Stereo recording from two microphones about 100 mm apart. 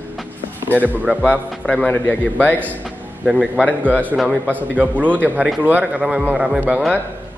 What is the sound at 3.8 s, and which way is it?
A man's voice, 15° right (ahead or behind).